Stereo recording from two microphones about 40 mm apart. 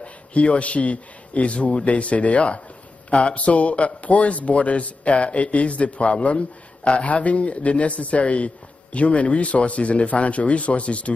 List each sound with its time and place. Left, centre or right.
0.0 s a man's voice: left